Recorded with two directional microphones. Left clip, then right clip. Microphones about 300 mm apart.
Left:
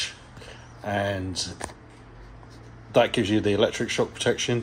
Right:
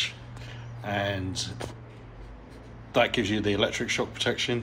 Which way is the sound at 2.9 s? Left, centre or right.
Left.